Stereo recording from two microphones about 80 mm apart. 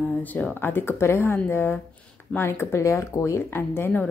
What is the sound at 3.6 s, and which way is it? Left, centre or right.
Speech, left.